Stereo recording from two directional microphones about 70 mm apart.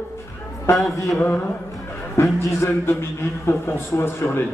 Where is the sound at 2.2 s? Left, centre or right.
Left.